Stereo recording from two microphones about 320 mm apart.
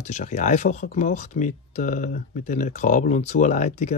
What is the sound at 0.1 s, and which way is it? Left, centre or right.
Speech, left.